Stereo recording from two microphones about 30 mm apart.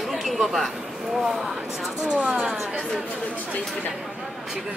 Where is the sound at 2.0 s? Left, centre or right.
Right.